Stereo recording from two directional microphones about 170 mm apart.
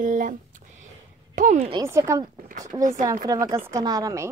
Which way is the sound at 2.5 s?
45° right (ahead or behind).